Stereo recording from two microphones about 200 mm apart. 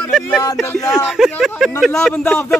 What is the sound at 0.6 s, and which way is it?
Speech, 10° left (ahead or behind).